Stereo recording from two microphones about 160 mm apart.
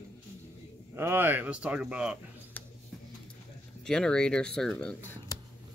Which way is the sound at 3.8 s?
5° left (ahead or behind).